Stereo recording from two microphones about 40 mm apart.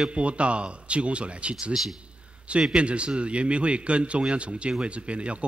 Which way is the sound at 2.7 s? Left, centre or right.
Right.